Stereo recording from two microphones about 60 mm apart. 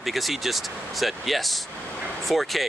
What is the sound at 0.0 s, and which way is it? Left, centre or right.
Speech, centre.